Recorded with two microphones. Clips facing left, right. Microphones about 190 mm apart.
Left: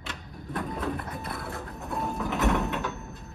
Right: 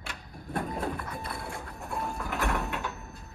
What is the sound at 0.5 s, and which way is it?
Speech, 45° right (ahead or behind).